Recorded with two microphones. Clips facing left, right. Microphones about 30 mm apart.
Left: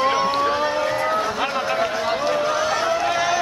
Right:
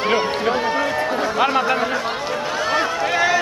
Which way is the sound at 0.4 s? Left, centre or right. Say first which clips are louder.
Right 1 dB; centre.